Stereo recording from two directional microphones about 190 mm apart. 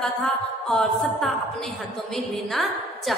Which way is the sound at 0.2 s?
5° left (ahead or behind).